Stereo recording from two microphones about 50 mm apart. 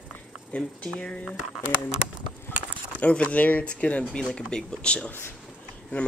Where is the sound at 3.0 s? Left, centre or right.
Left.